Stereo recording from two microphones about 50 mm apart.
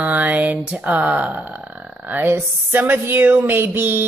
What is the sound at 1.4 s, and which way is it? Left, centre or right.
Speech, right.